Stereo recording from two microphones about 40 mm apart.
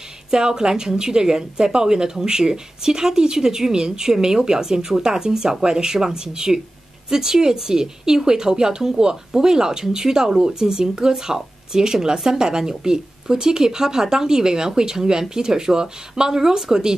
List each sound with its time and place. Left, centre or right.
0.3 s a woman's voice: centre